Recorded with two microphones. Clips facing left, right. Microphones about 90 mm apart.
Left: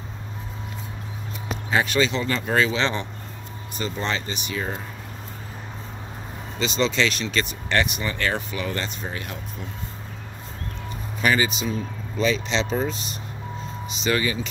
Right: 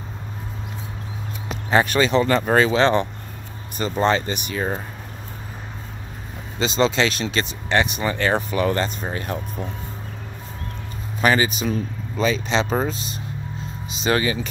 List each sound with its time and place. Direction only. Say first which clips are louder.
1.7 s speech: right 4 dB; 45° right (ahead or behind)
6.6 s speech: right 3 dB; 40° right (ahead or behind)
11.1 s speech: right 3 dB; 45° right (ahead or behind)
14.0 s speech: right 3 dB; 35° right (ahead or behind)